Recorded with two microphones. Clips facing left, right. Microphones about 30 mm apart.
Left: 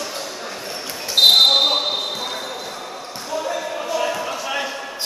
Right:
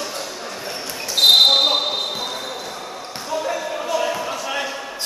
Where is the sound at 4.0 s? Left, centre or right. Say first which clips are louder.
Even; centre.